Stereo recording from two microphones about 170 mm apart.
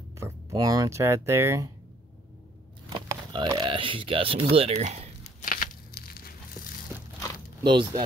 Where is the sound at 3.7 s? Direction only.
30° right (ahead or behind).